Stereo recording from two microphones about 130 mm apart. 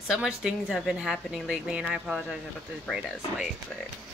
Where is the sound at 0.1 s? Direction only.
5° right (ahead or behind).